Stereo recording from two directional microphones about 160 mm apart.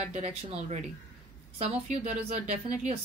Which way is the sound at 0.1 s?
40° right (ahead or behind).